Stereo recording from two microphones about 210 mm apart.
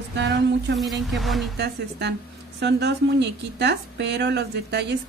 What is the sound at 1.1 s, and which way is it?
Speech, centre (ahead or behind).